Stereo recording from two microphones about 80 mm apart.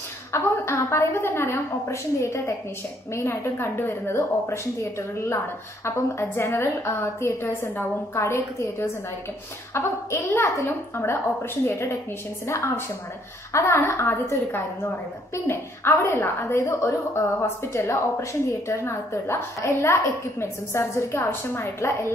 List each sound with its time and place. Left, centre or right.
0.3 s a woman's voice: left
5.9 s a woman's voice: left